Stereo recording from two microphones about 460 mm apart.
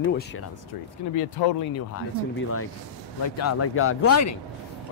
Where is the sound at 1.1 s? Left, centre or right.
Left.